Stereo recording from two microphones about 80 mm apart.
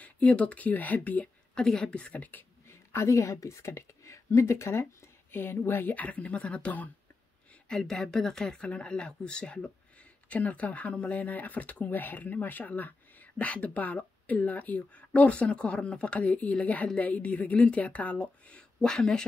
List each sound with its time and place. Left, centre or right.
0.0 s speech: centre
2.7 s a woman's voice: left; by 6.9 s centre
7.6 s speech: centre